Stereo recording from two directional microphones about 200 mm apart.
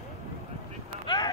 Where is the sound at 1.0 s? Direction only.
20° left (ahead or behind).